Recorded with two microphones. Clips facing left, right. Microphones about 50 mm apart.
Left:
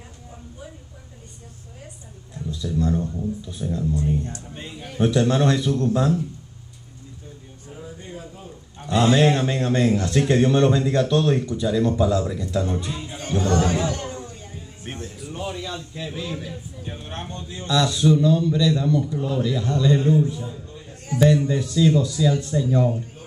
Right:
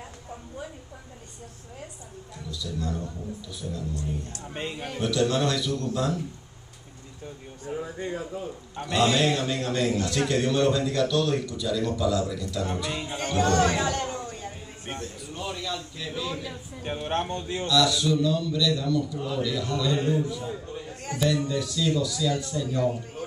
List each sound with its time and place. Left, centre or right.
2.5 s speech: left
4.6 s a man's voice: right
4.9 s speech: left
7.8 s a sound: right
8.9 s speech: left
12.9 s speech: right
13.8 s chatter: right
14.9 s a sound: centre
15.3 s a sound: centre
16.8 s speech: right
17.6 s speech: left
21.1 s speech: right
21.5 s speech: left